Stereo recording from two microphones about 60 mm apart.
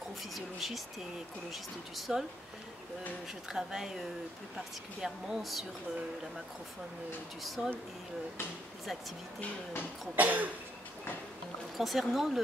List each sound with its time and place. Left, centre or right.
0.3 s speech: centre
3.4 s speech: centre
7.4 s speech: centre
10.1 s cough: right
11.7 s speech: centre